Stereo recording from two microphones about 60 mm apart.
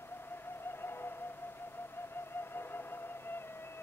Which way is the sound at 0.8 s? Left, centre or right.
Left.